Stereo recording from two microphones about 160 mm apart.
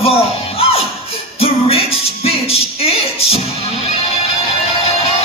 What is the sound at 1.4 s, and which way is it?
Music, 40° left (ahead or behind).